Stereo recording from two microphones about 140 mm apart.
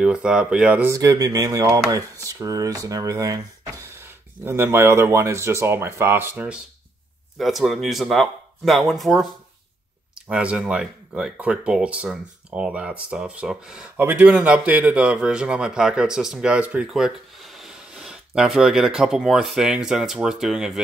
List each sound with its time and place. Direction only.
0.0 s speech: 5° right (ahead or behind)
0.9 s speech: 25° right (ahead or behind); by 17.1 s 5° right (ahead or behind)
17.6 s a sound: 5° right (ahead or behind)
18.9 s speech: 5° right (ahead or behind)